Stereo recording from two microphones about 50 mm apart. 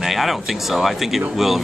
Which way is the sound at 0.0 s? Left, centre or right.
Centre.